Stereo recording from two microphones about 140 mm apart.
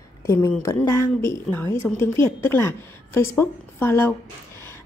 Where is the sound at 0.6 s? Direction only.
20° left (ahead or behind).